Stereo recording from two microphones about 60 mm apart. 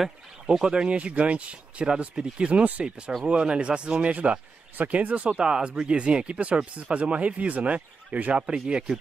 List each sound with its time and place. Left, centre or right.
0.0 s speech: centre